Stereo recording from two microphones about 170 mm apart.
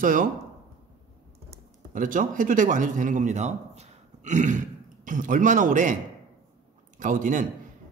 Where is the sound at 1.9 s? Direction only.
50° right (ahead or behind).